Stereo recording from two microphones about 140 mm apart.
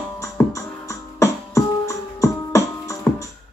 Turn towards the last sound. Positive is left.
turn(degrees=20)  # may be behind; listen again after turning